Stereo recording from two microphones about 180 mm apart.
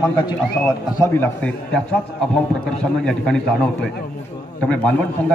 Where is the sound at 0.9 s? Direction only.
15° left (ahead or behind).